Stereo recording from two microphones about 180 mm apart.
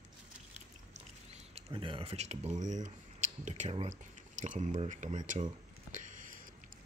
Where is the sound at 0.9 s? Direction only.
35° right (ahead or behind).